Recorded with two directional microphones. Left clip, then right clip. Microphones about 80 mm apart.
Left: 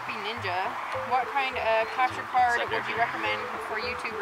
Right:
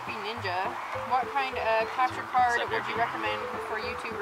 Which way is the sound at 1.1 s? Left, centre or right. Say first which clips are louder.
Left 1 dB; centre.